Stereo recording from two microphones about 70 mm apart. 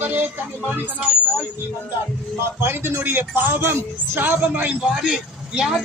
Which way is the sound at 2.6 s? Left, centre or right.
Right.